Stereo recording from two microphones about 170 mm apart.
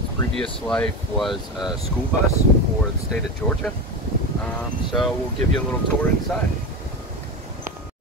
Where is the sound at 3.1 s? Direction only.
Centre (ahead or behind).